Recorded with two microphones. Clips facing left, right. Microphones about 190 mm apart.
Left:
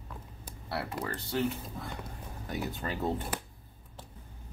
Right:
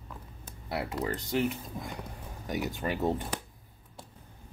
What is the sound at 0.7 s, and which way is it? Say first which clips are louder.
Speech: right 3 dB; 15° right (ahead or behind).